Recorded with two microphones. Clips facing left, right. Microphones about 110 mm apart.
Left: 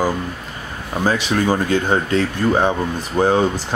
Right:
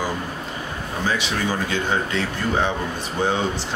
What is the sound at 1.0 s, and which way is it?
Speech, 45° left (ahead or behind).